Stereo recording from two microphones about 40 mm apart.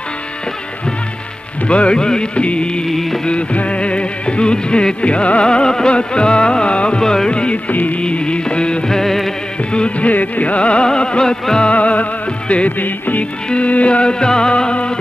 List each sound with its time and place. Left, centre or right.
1.7 s music: left
2.9 s music: centre
3.3 s music: left
7.0 s music: centre
7.7 s music: left
8.0 s music: left
8.9 s music: centre
9.7 s music: left
11.7 s music: left
12.7 s music: left
13.2 s music: left